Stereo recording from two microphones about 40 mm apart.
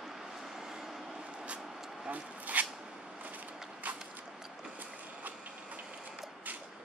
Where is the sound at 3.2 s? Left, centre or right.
Right.